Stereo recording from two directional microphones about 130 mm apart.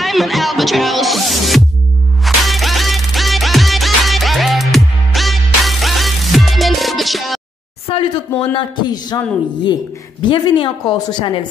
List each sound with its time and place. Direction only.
0.0 s music: centre (ahead or behind)
7.9 s a sound: 45° left (ahead or behind)
8.4 s speech: 35° left (ahead or behind)